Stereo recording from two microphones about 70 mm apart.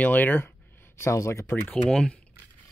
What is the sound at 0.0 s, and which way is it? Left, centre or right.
Speech, left.